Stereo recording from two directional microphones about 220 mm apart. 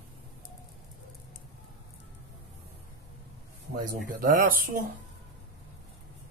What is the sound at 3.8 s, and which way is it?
Speech, 35° right (ahead or behind).